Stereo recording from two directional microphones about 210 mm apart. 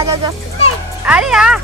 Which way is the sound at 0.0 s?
15° right (ahead or behind).